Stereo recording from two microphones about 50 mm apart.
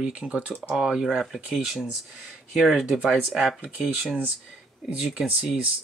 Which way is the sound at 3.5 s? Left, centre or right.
Centre.